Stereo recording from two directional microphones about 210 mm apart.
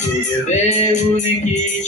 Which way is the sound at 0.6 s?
35° left (ahead or behind).